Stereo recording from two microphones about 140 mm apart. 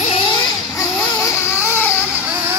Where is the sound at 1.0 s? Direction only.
15° left (ahead or behind).